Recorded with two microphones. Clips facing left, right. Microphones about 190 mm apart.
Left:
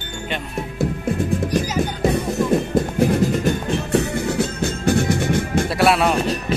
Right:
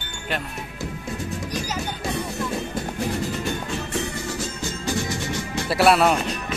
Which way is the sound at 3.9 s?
60° left (ahead or behind).